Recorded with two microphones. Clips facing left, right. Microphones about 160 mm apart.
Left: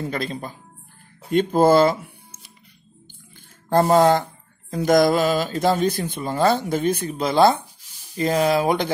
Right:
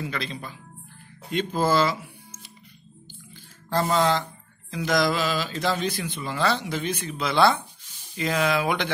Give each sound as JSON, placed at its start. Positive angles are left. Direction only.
{"t": 0.0, "sound": "mantra", "side_deg": 45}
{"t": 3.6, "sound": "mantra", "side_deg": 50}
{"t": 8.2, "sound": "speech", "side_deg": 40}